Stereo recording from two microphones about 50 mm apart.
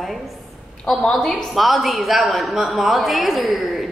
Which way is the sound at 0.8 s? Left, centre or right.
Centre.